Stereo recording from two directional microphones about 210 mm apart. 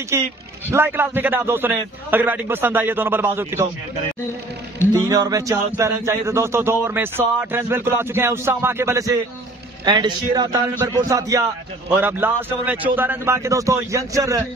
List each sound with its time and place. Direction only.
0.1 s speech: 15° right (ahead or behind)
4.9 s a man's voice: 15° right (ahead or behind)